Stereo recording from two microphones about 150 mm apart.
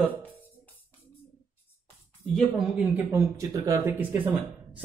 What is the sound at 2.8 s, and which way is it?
Speech, 15° right (ahead or behind).